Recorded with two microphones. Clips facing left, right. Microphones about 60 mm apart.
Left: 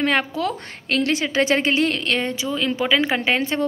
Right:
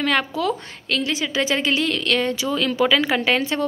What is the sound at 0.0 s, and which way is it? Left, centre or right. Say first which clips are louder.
A woman's voice: even; left.